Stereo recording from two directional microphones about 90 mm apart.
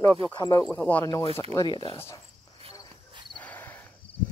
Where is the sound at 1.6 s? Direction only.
75° left (ahead or behind).